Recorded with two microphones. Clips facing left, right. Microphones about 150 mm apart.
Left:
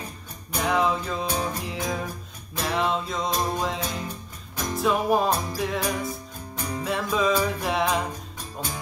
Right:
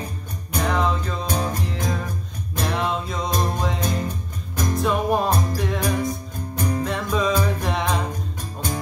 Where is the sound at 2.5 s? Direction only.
Centre (ahead or behind).